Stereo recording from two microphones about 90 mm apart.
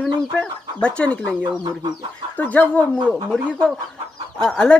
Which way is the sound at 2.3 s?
20° left (ahead or behind).